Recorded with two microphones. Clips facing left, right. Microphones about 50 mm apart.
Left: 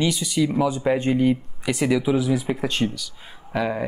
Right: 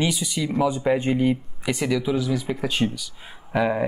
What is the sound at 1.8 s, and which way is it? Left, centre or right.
Speech, centre.